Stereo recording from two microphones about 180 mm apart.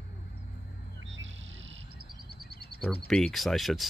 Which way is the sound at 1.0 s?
90° right.